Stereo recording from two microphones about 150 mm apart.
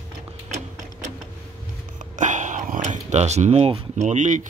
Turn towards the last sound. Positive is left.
turn(degrees=-55)  # may be behind; listen again after turning